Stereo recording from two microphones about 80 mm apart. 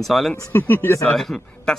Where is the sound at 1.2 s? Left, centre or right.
Centre.